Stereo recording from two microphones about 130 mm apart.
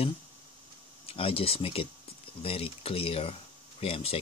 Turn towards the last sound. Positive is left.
turn(degrees=50)  # may be behind; listen again after turning